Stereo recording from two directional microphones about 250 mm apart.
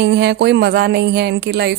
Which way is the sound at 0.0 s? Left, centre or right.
Right.